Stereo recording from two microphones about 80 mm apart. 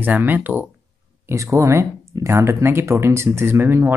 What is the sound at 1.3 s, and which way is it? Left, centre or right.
Speech, right.